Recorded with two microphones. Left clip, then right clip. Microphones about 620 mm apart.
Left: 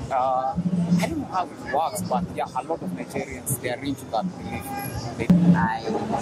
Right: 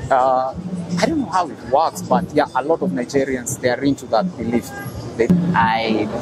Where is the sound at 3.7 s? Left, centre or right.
Right.